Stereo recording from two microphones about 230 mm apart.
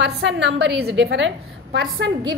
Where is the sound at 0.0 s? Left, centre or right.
Right.